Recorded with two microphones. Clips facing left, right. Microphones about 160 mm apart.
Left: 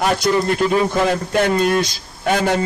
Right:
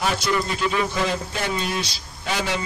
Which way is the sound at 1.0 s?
55° left (ahead or behind).